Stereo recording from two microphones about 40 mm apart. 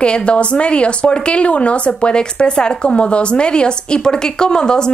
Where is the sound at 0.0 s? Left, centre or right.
Left.